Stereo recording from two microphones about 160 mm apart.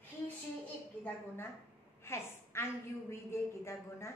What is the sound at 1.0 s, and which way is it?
A woman's voice, 15° left (ahead or behind).